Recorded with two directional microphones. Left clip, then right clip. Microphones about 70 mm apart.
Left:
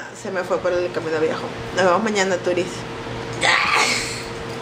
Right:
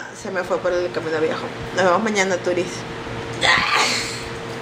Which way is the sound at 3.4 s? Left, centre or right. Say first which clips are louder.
Even; centre.